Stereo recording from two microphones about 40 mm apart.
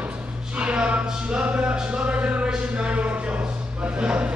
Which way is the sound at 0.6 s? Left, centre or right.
Right.